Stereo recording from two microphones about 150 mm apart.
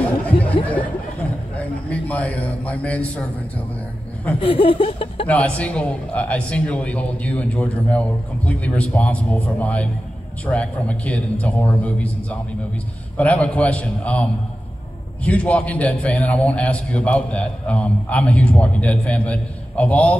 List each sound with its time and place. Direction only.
1.9 s a man's voice: 10° left (ahead or behind)
4.4 s chuckle: 40° left (ahead or behind)
5.2 s a man's voice: 10° left (ahead or behind)